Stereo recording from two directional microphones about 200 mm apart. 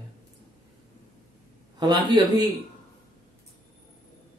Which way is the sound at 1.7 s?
20° right (ahead or behind).